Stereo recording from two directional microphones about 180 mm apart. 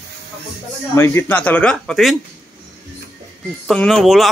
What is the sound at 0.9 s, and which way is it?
Speech, 15° left (ahead or behind).